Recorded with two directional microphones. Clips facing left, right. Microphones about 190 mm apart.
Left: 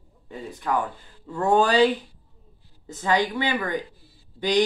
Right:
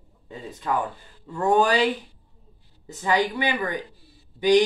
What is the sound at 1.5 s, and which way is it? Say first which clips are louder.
Speech: left 2 dB; 15° right (ahead or behind).